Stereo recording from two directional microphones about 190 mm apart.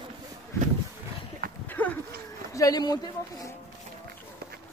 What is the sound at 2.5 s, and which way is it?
Speech, 20° left (ahead or behind).